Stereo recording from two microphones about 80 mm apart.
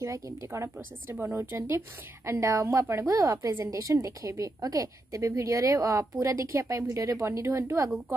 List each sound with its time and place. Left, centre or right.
0.0 s a woman's voice: right